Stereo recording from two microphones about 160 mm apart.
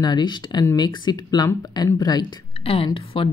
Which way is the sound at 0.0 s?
25° left (ahead or behind).